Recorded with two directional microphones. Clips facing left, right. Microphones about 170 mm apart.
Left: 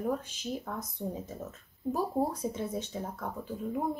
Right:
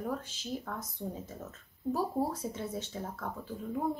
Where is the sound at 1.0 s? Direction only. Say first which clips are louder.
Left 3 dB; 15° left (ahead or behind).